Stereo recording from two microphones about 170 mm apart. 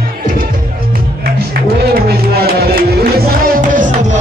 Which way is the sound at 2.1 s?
65° right (ahead or behind).